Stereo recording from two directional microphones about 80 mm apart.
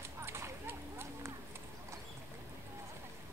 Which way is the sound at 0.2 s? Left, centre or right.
Right.